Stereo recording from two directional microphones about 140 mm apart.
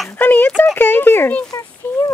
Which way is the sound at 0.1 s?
10° left (ahead or behind).